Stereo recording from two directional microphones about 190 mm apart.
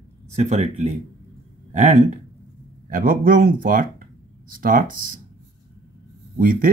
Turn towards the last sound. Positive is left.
turn(degrees=-50)  # may be behind; listen again after turning